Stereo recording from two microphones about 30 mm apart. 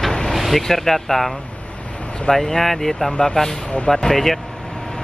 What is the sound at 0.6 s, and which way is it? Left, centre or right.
Speech, centre.